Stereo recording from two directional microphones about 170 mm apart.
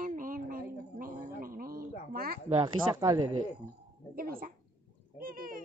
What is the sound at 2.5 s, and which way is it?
Speech, 25° right (ahead or behind).